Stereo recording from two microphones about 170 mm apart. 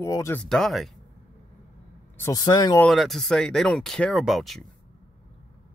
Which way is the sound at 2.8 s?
Centre (ahead or behind).